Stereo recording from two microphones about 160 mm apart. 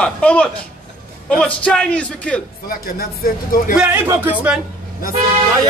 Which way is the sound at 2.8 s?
70° left (ahead or behind).